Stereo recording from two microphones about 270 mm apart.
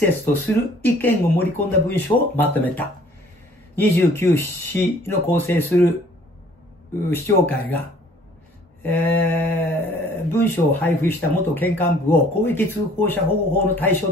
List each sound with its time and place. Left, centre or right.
0.0 s speech: centre
7.1 s speech: centre
8.8 s speech: centre